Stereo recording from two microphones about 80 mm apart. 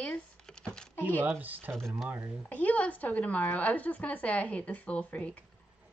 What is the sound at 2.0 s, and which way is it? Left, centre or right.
Speech, right.